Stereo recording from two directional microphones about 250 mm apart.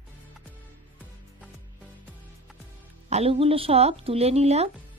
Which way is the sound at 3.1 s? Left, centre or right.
Right.